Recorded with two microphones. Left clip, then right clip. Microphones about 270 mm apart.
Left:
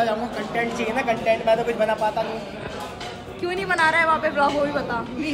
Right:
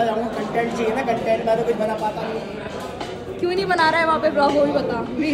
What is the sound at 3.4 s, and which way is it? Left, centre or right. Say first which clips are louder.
Speech: right 3 dB; centre.